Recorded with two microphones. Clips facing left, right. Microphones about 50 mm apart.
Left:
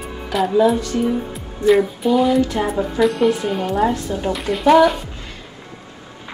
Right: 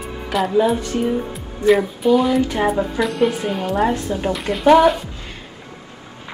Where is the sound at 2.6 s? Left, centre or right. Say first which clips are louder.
Left 1 dB; centre.